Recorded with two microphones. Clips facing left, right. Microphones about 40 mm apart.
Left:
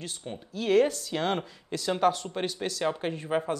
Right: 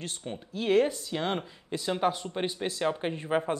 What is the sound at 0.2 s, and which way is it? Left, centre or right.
Speech, right.